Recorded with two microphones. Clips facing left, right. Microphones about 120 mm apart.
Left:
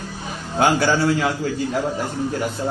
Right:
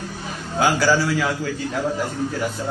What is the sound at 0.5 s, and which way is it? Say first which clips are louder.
Speech: left 1 dB; 25° left (ahead or behind).